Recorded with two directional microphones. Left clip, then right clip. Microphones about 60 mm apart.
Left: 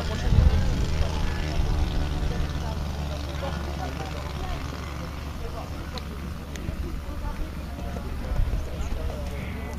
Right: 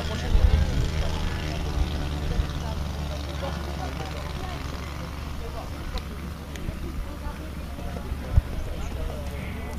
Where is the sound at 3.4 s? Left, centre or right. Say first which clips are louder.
Even; right.